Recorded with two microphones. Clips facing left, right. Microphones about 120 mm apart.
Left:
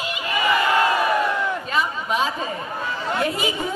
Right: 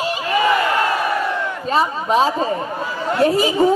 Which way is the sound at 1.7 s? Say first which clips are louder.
Right 10 dB; 35° right (ahead or behind).